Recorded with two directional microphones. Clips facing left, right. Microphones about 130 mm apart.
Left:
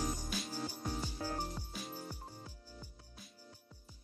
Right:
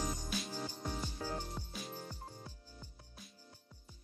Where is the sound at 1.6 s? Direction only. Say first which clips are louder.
Right 1 dB; 10° left (ahead or behind).